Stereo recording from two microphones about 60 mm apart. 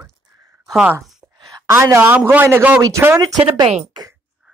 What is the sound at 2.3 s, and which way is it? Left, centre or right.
Speech, right.